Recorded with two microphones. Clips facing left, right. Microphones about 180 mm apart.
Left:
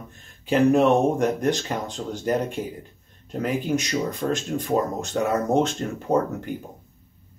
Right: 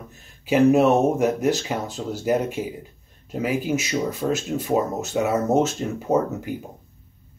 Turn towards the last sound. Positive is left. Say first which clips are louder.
# right 1 dB
turn(degrees=-5)  # may be behind; listen again after turning